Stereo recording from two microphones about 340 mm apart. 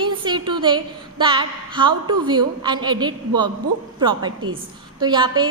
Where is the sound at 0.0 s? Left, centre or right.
Centre.